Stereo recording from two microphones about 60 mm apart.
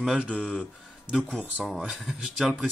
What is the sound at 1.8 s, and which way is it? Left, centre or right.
Mantra, centre.